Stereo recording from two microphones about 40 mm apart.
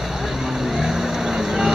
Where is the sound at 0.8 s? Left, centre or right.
Centre.